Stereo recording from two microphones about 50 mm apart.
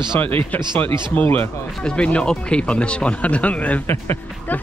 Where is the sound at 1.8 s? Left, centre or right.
Left.